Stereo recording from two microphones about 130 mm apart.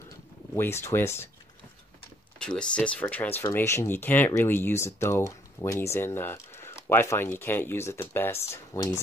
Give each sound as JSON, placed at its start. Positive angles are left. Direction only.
{"t": 0.6, "sound": "speech", "side_deg": 20}
{"t": 2.3, "sound": "speech", "side_deg": 5}